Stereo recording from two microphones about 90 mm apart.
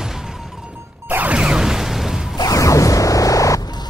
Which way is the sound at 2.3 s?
40° left (ahead or behind).